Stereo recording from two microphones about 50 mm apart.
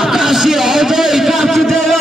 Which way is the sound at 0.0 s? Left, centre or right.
Centre.